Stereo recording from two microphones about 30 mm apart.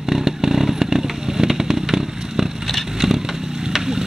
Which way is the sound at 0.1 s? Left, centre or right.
Centre.